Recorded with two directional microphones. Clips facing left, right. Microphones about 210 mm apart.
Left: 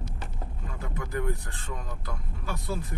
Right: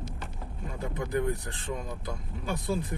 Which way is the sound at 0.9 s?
15° right (ahead or behind).